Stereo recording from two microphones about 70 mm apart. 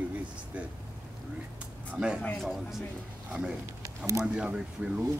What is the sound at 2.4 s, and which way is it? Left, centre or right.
Speech, centre.